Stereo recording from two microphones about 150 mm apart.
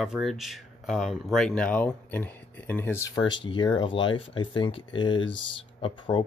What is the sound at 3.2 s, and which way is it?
Speech, 30° left (ahead or behind).